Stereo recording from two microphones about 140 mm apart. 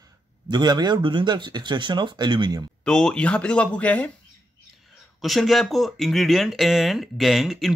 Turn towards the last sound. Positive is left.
turn(degrees=0)  # may be behind; listen again after turning